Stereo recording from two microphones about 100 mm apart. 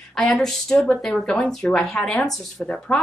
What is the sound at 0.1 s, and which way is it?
Speech, centre (ahead or behind).